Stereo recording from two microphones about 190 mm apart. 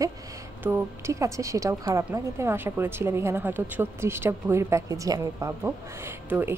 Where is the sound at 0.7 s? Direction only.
15° right (ahead or behind).